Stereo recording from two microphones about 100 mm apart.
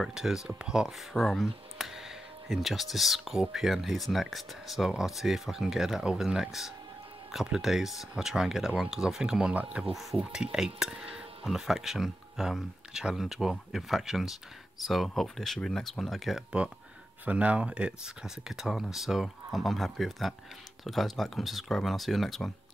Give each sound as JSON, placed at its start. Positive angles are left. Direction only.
{"t": 0.0, "sound": "speech", "side_deg": -5}